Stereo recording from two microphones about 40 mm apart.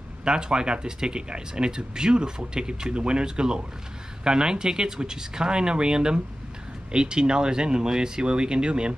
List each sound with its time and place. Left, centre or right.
0.2 s speech: centre